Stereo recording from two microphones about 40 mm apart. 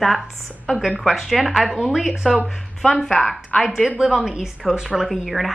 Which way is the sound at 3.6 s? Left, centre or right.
Centre.